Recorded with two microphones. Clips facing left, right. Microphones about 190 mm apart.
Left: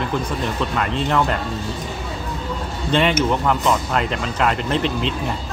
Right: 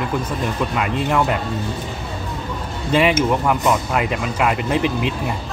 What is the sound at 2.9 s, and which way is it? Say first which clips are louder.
Speech: right 2 dB; 10° right (ahead or behind).